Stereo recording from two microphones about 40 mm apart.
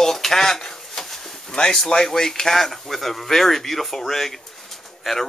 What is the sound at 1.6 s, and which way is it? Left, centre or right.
Speech, centre.